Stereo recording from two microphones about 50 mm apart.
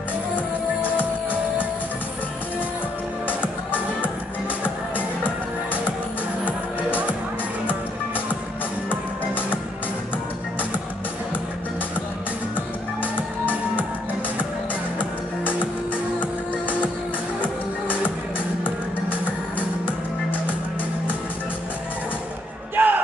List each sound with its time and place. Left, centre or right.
3.3 s music: left
12.5 s music: left
15.0 s music: left
17.4 s music: left
22.8 s music: right